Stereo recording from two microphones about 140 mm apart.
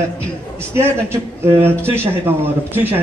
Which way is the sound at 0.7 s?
20° right (ahead or behind).